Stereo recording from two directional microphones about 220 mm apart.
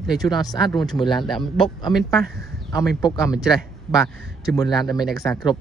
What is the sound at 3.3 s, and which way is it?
Speech, centre (ahead or behind).